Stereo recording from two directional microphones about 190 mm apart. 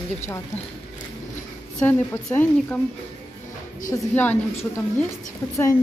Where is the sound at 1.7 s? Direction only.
10° left (ahead or behind).